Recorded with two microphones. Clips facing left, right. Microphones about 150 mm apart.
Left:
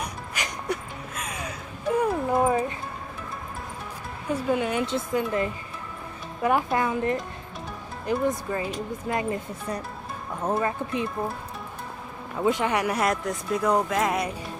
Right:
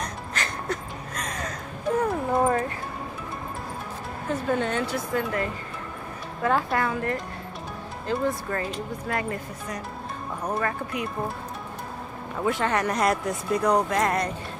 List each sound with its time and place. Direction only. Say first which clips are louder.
0.0 s music: right 1 dB; 10° left (ahead or behind)
4.3 s speech: left 1 dB; 10° left (ahead or behind)
4.8 s speech: left 1 dB; 20° left (ahead or behind)
9.0 s speech: left 2 dB; 20° left (ahead or behind)
12.4 s speech: left 1 dB; 15° left (ahead or behind)